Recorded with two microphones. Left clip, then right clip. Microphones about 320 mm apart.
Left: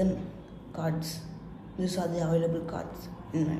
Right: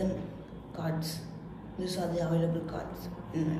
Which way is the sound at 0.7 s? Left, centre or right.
Centre.